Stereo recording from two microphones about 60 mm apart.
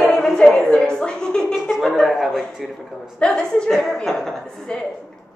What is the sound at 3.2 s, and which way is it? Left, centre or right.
A woman's voice, centre.